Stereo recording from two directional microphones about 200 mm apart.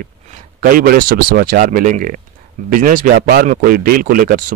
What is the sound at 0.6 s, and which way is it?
Speech, 45° right (ahead or behind).